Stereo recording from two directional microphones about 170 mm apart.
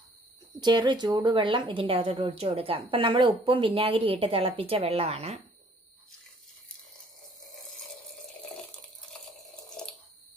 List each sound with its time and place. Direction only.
0.6 s a woman's voice: 25° right (ahead or behind)